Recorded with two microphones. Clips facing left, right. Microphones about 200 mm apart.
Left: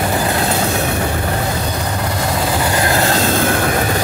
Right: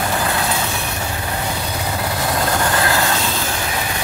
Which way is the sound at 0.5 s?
45° left (ahead or behind).